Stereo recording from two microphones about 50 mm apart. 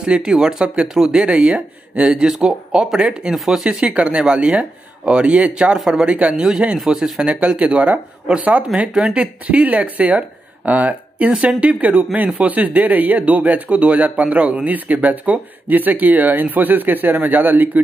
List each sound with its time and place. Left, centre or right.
0.0 s speech: centre
3.6 s speech: centre
6.8 s speech: centre
7.2 s speech: right
12.4 s speech: right